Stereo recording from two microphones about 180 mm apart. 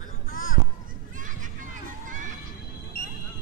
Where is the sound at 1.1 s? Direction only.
45° right (ahead or behind).